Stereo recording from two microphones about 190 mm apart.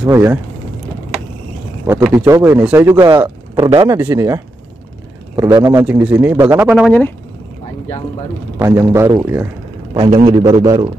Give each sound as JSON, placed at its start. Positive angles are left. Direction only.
{"t": 0.0, "sound": "speech", "side_deg": -10}
{"t": 1.9, "sound": "speech", "side_deg": -15}
{"t": 3.5, "sound": "speech", "side_deg": -30}
{"t": 3.8, "sound": "a man's voice", "side_deg": -15}
{"t": 8.5, "sound": "speech", "side_deg": -15}
{"t": 9.9, "sound": "a man's voice", "side_deg": -30}
{"t": 10.4, "sound": "speech", "side_deg": -15}